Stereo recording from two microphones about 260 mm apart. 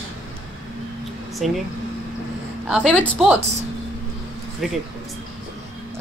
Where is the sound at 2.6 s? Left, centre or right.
Centre.